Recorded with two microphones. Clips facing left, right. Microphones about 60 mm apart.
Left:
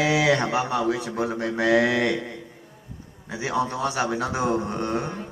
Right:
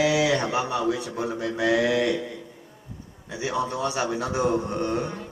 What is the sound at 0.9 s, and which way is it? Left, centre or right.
A man's voice, left.